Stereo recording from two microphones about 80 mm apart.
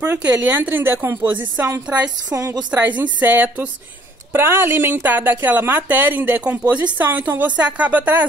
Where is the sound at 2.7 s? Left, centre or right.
Right.